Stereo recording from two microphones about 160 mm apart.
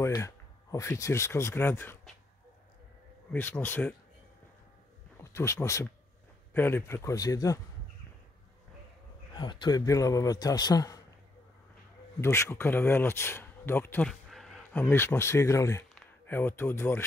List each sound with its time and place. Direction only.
0.0 s speech: 20° left (ahead or behind)
3.3 s speech: 10° left (ahead or behind)
5.2 s a man's voice: 15° left (ahead or behind)
9.3 s a man's voice: 30° left (ahead or behind)
12.2 s speech: 15° left (ahead or behind)
14.3 s speech: centre (ahead or behind)